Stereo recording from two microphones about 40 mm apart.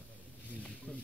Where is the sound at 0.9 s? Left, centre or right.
Left.